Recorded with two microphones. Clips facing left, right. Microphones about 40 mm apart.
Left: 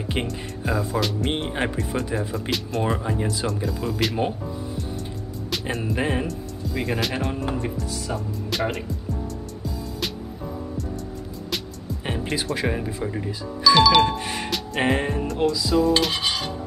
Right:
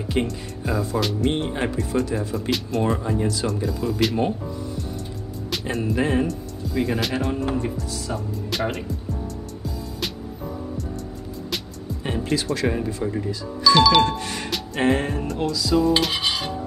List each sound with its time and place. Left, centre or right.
0.2 s speech: left
0.7 s speech: centre
2.5 s speech: centre
3.2 s speech: centre
3.4 s speech: centre
5.5 s music: centre
5.9 s speech: centre
12.1 s music: centre
12.6 s speech: centre
14.0 s speech: centre
15.7 s dishes: centre